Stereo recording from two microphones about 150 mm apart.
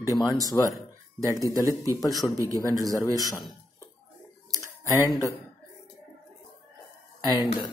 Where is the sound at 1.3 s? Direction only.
20° right (ahead or behind).